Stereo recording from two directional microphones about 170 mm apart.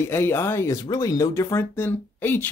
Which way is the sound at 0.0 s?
15° left (ahead or behind).